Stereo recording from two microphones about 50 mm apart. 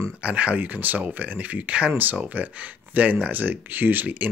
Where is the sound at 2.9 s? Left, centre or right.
Right.